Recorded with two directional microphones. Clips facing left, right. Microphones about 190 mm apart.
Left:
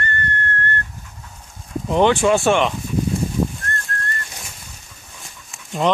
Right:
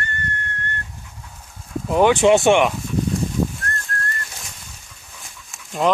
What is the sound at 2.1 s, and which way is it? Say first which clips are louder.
Speech: right 2 dB; 20° right (ahead or behind).